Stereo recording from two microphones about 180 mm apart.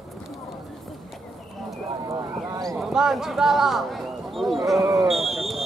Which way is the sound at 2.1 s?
20° right (ahead or behind).